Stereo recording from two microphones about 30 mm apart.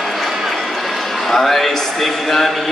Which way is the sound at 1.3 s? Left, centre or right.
Centre.